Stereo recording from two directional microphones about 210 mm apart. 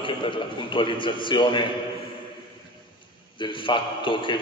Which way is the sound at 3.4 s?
25° left (ahead or behind).